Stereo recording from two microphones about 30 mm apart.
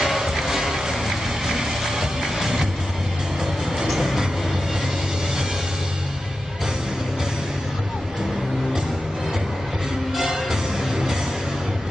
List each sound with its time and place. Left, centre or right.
0.0 s music: centre
3.7 s music: centre
10.1 s music: centre